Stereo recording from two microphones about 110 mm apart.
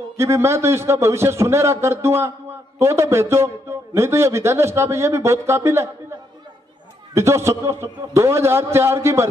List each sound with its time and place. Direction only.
0.2 s a man's voice: 25° right (ahead or behind)
7.2 s a man's voice: 25° right (ahead or behind)